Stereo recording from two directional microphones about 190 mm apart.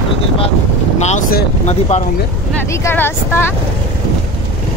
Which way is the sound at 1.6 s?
35° left (ahead or behind).